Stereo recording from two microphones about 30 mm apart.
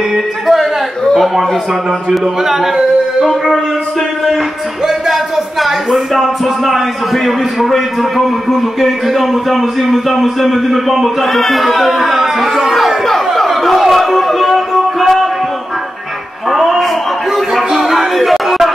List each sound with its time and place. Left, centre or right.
0.1 s a man's voice: centre
2.2 s speech: centre
4.8 s music: centre
5.6 s a man's voice: centre
12.6 s a sound: centre
16.4 s a sound: centre